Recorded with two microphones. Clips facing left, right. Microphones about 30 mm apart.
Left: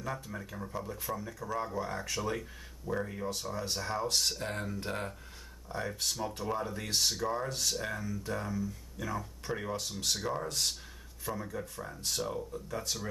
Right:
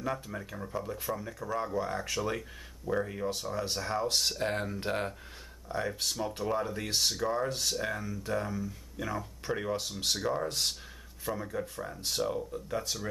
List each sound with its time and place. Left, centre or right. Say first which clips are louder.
0.0 s speech: right 4 dB; centre
4.4 s speech: right 5 dB; right
11.4 s speech: right 4 dB; right
11.7 s speech: right 2 dB; centre